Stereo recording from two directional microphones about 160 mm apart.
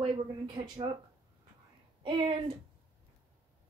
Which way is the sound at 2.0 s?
30° right (ahead or behind).